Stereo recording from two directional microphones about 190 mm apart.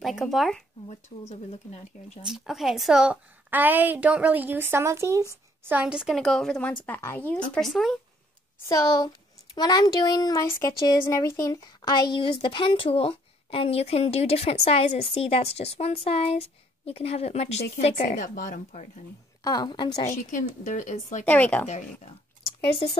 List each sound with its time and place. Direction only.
0.0 s speech: centre (ahead or behind)
1.3 s speech: 35° left (ahead or behind)
2.2 s a woman's voice: centre (ahead or behind)
8.6 s a woman's voice: 20° left (ahead or behind); by 19.0 s 40° left (ahead or behind)
19.4 s a woman's voice: 20° left (ahead or behind)
20.1 s speech: 45° left (ahead or behind)
21.3 s speech: 10° left (ahead or behind)